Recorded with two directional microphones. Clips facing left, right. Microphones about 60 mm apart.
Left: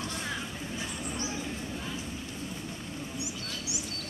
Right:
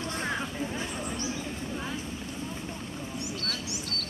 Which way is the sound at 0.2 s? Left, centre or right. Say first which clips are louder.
Right 5 dB; right.